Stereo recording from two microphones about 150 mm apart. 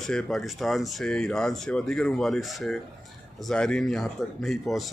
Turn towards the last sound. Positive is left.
turn(degrees=0)  # may be behind; listen again after turning